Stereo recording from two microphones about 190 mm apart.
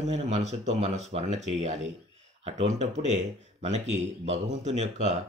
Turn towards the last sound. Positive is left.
turn(degrees=-35)  # may be behind; listen again after turning